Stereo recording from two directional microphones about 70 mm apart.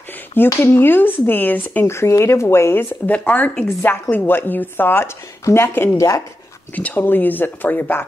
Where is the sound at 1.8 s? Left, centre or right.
Left.